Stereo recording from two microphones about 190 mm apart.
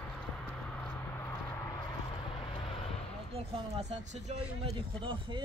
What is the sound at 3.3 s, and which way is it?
Speech, 35° right (ahead or behind).